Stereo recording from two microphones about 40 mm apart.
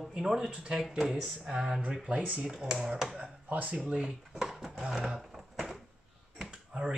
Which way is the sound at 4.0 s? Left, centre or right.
Centre.